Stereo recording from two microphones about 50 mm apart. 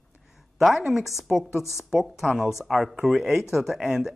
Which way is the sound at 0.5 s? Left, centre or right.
Centre.